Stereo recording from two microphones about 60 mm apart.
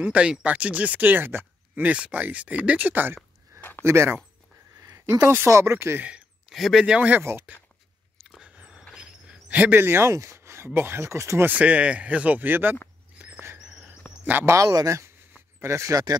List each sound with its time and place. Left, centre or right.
0.0 s speech: centre; by 1.9 s right
1.9 s speech: centre
3.8 s speech: right
4.8 s a sound: right
5.2 s speech: right
5.9 s speech: right
6.5 s speech: centre
7.0 s speech: right
8.4 s dog: centre
8.9 s a sound: centre
9.5 s speech: right
10.1 s speech: right
11.4 s speech: right
14.4 s speech: right